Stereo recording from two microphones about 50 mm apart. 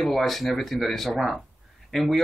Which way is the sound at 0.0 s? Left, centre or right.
Centre.